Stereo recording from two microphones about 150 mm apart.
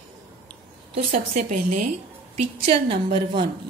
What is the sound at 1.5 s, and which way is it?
Speech, 60° right (ahead or behind).